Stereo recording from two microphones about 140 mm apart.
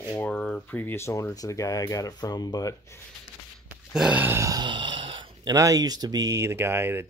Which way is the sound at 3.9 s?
10° right (ahead or behind).